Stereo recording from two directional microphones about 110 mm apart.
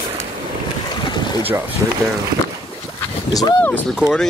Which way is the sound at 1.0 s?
45° left (ahead or behind).